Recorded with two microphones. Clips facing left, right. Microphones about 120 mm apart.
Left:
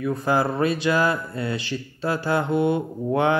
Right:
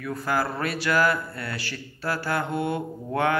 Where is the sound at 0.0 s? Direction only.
20° left (ahead or behind).